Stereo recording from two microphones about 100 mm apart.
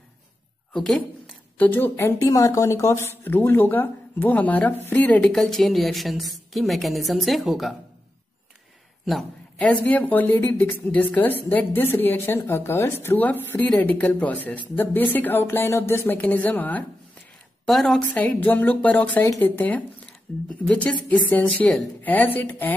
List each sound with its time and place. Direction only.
0.7 s a woman's voice: 5° left (ahead or behind)
1.6 s speech: 20° left (ahead or behind)
2.2 s a woman's voice: 35° left (ahead or behind); by 7.7 s centre (ahead or behind)
9.8 s a woman's voice: 15° left (ahead or behind)
17.6 s a woman's voice: 5° left (ahead or behind)
18.1 s a woman's voice: 15° left (ahead or behind)
20.3 s a woman's voice: 5° left (ahead or behind)